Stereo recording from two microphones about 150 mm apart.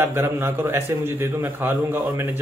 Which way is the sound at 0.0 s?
15° right (ahead or behind).